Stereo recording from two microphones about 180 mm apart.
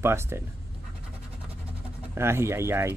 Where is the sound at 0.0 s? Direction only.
15° right (ahead or behind).